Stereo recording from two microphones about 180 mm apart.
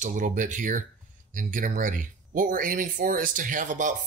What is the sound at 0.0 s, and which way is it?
Speech, 45° right (ahead or behind).